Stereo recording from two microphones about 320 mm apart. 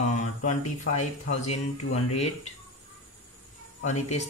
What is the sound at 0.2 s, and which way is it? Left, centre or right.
Speech, left.